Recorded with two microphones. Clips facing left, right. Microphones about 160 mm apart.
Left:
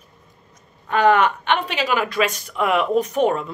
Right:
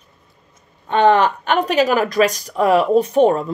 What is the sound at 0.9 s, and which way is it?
Speech, 30° right (ahead or behind).